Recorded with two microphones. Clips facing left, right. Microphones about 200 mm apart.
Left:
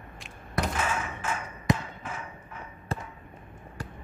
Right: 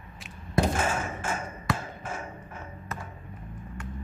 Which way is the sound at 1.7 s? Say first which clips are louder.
Right 2 dB; 45° right (ahead or behind).